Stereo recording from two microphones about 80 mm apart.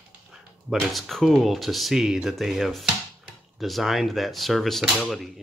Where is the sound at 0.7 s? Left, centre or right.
Centre.